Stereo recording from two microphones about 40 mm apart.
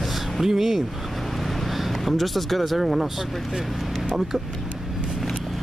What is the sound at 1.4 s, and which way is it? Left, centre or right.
Speech, centre.